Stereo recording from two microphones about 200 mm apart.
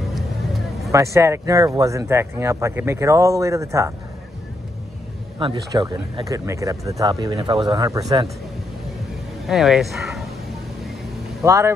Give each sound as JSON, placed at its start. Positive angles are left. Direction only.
{"t": 0.9, "sound": "speech", "side_deg": -15}
{"t": 5.4, "sound": "speech", "side_deg": -25}
{"t": 9.5, "sound": "speech", "side_deg": 0}
{"t": 11.4, "sound": "speech", "side_deg": -15}